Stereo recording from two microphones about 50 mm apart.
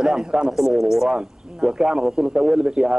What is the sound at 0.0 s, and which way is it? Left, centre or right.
Speech, centre.